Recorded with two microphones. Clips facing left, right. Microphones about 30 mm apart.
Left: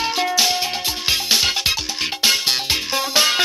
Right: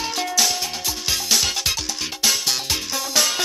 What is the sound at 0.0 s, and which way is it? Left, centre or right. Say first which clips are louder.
Music: left 3 dB; left.